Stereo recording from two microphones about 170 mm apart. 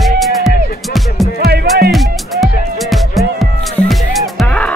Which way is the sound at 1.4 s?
65° right (ahead or behind).